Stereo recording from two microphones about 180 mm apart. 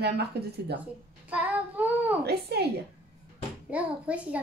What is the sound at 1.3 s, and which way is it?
Child singing, 10° right (ahead or behind).